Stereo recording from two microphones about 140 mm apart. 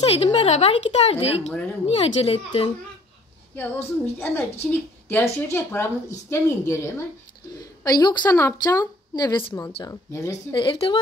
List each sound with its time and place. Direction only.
0.0 s speech: 45° left (ahead or behind)
3.5 s a woman's voice: 15° left (ahead or behind)
7.8 s speech: 30° left (ahead or behind)
10.5 s speech: 35° left (ahead or behind)